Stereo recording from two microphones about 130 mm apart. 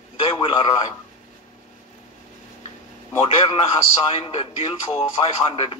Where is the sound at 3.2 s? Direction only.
45° left (ahead or behind).